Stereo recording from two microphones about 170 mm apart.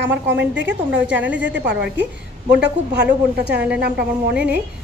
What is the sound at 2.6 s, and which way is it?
Speech, 85° right.